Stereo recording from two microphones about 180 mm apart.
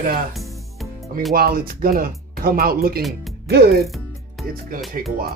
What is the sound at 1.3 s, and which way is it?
Speech, 55° right (ahead or behind).